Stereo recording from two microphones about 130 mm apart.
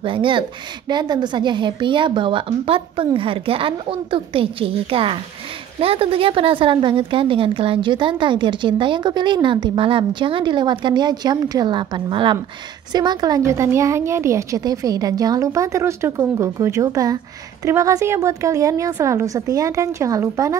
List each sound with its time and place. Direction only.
0.0 s speech: 40° right (ahead or behind); by 20.5 s 25° right (ahead or behind)